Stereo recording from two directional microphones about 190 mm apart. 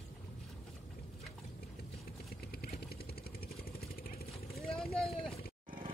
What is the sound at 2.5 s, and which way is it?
Vehicle, 55° left (ahead or behind).